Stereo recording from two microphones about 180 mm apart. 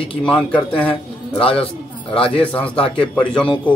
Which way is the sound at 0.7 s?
30° left (ahead or behind).